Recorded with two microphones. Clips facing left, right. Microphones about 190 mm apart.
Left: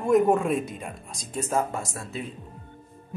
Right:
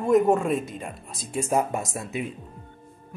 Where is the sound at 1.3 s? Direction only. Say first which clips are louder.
Right 2 dB; 15° right (ahead or behind).